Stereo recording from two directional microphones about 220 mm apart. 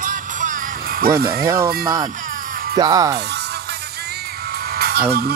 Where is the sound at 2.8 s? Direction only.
15° right (ahead or behind).